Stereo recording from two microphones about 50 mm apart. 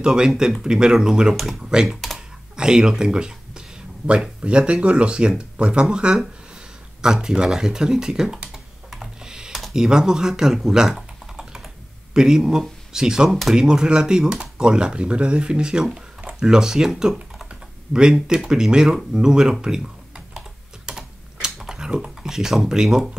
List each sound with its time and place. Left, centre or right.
0.0 s speech: centre
1.6 s speech: centre
1.9 s speech: centre
2.1 s computer keyboard: centre
4.4 s speech: right
9.0 s typing: centre
9.8 s speech: centre
20.8 s typing: centre
21.5 s a sound: centre
22.3 s speech: centre